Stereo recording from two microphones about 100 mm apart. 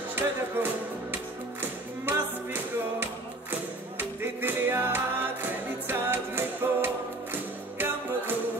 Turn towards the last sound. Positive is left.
turn(degrees=-25)  # may be behind; listen again after turning